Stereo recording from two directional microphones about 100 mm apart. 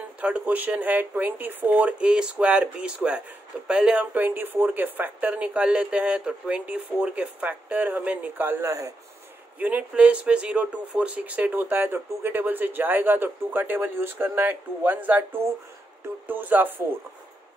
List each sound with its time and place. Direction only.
0.2 s speech: 15° right (ahead or behind); by 8.9 s 35° right (ahead or behind)
9.6 s speech: 15° right (ahead or behind)